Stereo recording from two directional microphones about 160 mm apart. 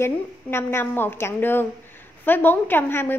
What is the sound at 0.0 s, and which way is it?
A woman's voice, 15° left (ahead or behind).